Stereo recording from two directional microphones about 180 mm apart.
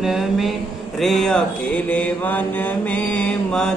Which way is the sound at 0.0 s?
Centre (ahead or behind).